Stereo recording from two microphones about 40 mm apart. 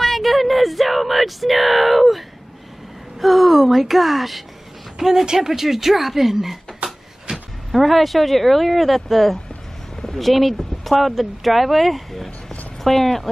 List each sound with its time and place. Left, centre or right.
0.0 s a sound: centre
3.2 s whimper: centre
5.0 s speech: centre
6.8 s a sound: right
7.3 s vehicle: right
7.7 s speech: centre